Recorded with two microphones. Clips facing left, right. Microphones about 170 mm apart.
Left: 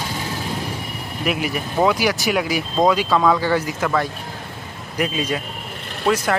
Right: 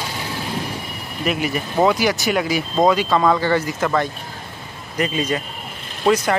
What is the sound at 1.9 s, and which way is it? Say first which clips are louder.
Speech: right 1 dB; 10° left (ahead or behind).